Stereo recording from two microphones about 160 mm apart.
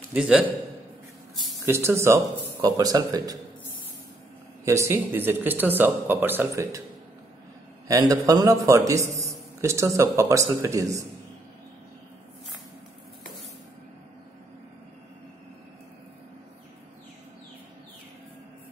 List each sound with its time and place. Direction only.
0.1 s speech: 5° right (ahead or behind)
1.7 s a man's voice: 15° right (ahead or behind)
4.6 s speech: 15° right (ahead or behind)
7.9 s a man's voice: 20° right (ahead or behind)